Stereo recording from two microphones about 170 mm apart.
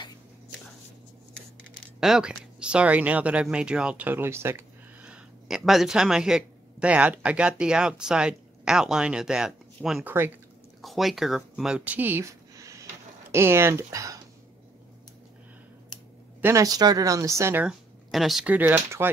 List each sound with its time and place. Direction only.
2.0 s speech: centre (ahead or behind); by 14.2 s 20° right (ahead or behind)
16.3 s speech: 15° right (ahead or behind)